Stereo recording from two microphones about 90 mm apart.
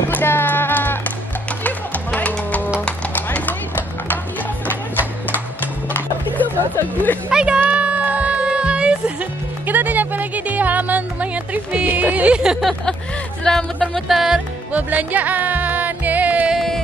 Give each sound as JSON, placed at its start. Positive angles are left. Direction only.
{"t": 0.1, "sound": "music", "side_deg": 25}
{"t": 3.2, "sound": "a sound", "side_deg": 20}
{"t": 4.6, "sound": "music", "side_deg": 20}
{"t": 7.2, "sound": "a sound", "side_deg": -10}
{"t": 7.6, "sound": "music", "side_deg": -15}
{"t": 13.4, "sound": "music", "side_deg": 10}
{"t": 14.0, "sound": "music", "side_deg": -5}
{"t": 14.7, "sound": "music", "side_deg": -15}
{"t": 16.5, "sound": "music", "side_deg": 5}